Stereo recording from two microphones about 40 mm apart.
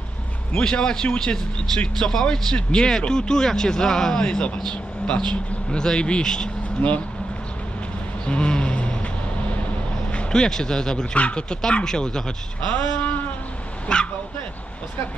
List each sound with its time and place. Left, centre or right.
0.6 s speech: left
6.8 s speech: left
8.3 s vehicle: left
10.3 s speech: centre
11.1 s speech: left
12.7 s a sound: left
13.9 s speech: left